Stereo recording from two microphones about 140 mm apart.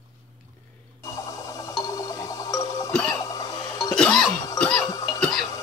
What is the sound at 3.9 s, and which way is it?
Cough, 5° left (ahead or behind).